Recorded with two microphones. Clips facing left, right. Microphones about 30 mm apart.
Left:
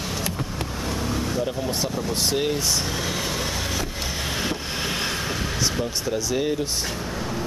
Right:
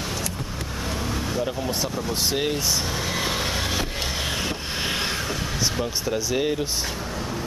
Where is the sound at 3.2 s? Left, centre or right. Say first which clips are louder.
Right 2 dB; right.